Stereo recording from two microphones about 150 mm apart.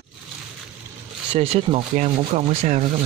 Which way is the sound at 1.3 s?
40° right (ahead or behind).